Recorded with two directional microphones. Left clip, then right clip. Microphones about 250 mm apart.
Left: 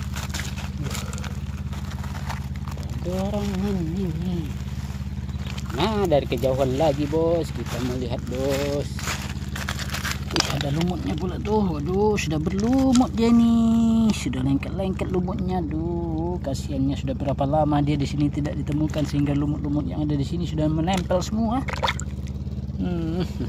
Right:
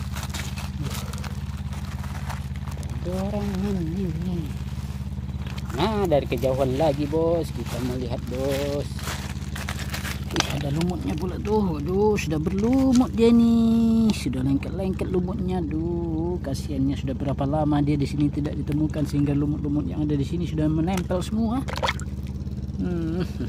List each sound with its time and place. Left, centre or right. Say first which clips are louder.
3.2 s speech: left 2 dB; centre
5.8 s speech: left 1 dB; centre
7.7 s speech: left 1 dB; centre
8.5 s speech: left 2 dB; centre
10.8 s speech: left 1 dB; centre